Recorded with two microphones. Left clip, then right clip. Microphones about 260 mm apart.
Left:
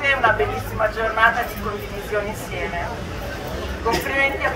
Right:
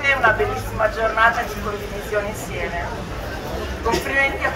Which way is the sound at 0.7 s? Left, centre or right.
Left.